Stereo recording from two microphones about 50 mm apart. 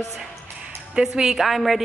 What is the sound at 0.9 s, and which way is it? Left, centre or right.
Speech, centre.